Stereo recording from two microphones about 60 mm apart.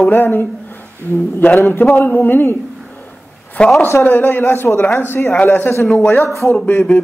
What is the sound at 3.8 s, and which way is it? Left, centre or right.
A man's voice, left.